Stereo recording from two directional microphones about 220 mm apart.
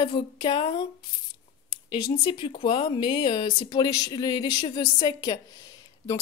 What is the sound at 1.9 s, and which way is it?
A woman's voice, 20° left (ahead or behind).